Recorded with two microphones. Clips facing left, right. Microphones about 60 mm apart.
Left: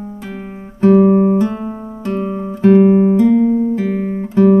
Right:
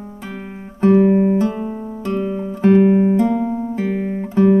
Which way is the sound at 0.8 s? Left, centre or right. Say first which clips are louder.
Left 3 dB; centre.